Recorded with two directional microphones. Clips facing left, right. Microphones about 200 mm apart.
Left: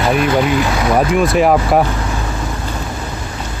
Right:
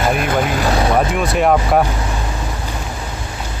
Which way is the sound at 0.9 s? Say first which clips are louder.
Left 3 dB; centre (ahead or behind).